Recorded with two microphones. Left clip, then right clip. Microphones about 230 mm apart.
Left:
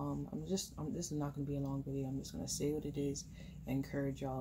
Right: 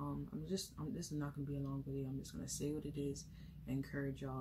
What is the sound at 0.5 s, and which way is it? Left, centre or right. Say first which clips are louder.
Speech: left 3 dB; centre.